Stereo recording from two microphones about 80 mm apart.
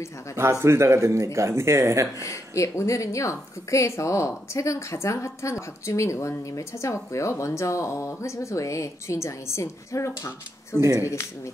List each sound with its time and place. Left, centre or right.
0.4 s speech: right
2.2 s a woman's voice: left
10.8 s speech: right